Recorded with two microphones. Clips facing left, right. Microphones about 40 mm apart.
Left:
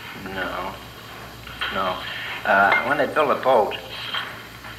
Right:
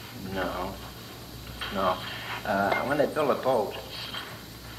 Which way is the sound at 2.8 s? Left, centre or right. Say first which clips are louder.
Left 6 dB; left.